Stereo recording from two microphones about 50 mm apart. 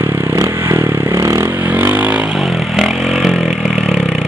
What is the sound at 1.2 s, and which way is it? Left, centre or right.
Vehicle, right.